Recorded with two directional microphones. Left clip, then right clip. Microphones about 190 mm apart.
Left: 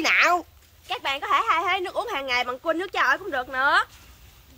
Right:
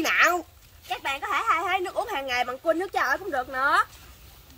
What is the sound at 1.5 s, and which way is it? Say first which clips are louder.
Speech: left 2 dB; 15° left (ahead or behind).